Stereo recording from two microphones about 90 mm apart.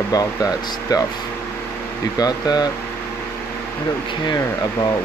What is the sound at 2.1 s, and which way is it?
Speech, 45° left (ahead or behind).